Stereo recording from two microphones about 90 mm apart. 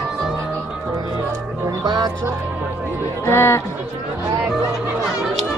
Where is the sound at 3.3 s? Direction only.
30° left (ahead or behind).